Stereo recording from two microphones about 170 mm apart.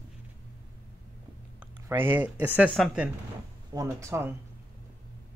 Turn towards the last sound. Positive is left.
turn(degrees=-15)  # may be behind; listen again after turning